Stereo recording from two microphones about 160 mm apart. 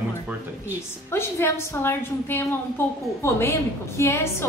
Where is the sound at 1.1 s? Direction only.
15° left (ahead or behind).